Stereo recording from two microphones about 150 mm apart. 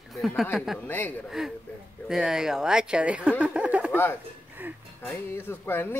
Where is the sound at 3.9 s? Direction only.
15° left (ahead or behind).